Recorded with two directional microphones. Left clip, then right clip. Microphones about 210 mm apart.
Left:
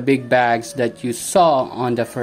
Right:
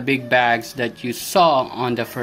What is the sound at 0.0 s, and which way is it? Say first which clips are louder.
Speech: left 1 dB; 30° left (ahead or behind).